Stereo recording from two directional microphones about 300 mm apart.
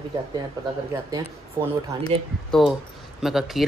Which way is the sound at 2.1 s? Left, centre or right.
Centre.